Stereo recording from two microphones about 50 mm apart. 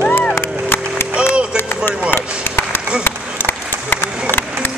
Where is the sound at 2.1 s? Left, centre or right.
Left.